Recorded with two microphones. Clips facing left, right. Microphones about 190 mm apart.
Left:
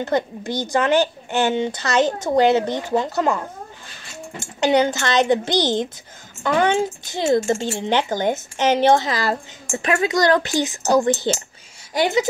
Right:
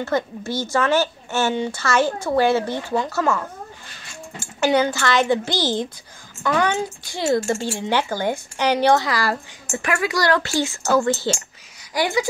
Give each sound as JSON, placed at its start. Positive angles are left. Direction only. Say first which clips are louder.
{"t": 0.0, "sound": "speech", "louder": "left 1 dB", "side_deg": 20}
{"t": 4.6, "sound": "speech", "louder": "left 1 dB", "side_deg": 20}